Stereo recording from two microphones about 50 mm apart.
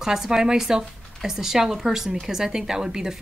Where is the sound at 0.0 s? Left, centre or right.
Centre.